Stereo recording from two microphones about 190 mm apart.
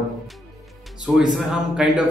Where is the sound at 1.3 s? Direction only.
Centre (ahead or behind).